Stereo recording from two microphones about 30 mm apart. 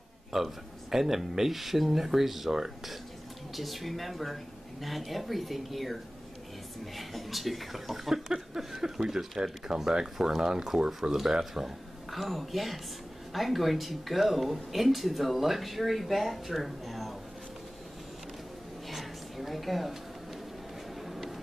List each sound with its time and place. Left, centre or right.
0.3 s speech: centre
3.5 s speech: centre
7.0 s speech: centre
12.1 s speech: centre
18.9 s a sound: centre